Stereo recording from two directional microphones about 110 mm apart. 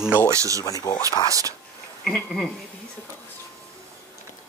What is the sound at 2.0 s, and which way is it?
Speech, 5° left (ahead or behind).